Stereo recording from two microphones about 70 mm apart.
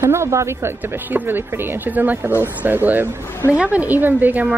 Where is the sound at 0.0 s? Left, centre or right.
Right.